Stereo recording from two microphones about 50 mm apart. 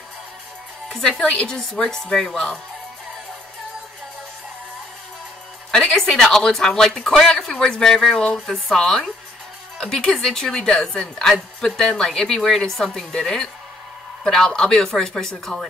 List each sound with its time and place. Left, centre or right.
0.8 s speech: centre
1.2 s a woman's voice: left
1.5 s speech: centre
5.7 s music: centre
5.9 s speech: centre